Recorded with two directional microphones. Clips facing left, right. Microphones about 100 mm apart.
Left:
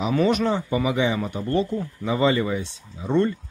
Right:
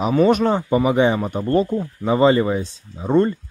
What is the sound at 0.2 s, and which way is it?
Speech, 40° right (ahead or behind).